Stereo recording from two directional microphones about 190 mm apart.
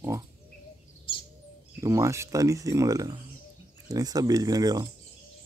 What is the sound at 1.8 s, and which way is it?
Speech, 15° right (ahead or behind).